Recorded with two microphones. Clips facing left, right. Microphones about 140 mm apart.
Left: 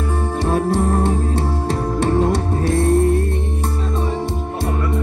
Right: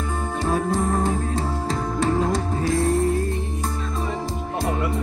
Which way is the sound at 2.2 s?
65° left (ahead or behind).